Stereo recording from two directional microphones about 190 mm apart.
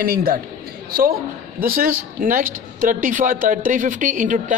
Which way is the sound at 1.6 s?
50° right (ahead or behind).